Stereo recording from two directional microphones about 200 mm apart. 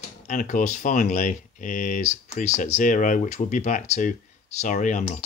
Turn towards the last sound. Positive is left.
turn(degrees=40)  # may be behind; listen again after turning